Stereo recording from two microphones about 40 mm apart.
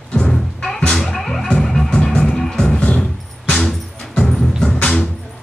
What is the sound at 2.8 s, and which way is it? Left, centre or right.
Music, left.